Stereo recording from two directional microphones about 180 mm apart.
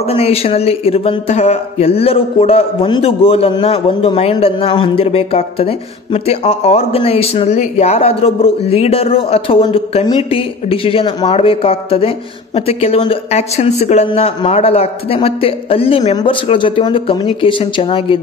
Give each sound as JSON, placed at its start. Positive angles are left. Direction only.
{"t": 0.0, "sound": "speech", "side_deg": 35}